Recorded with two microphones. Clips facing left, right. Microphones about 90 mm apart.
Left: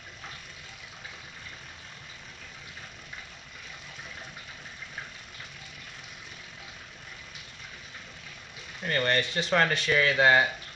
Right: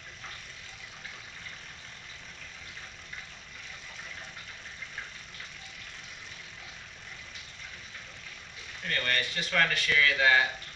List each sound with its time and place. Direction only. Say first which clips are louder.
8.8 s speech: left 5 dB; 30° left (ahead or behind)